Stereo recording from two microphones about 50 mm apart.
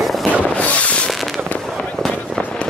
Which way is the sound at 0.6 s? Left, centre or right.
Left.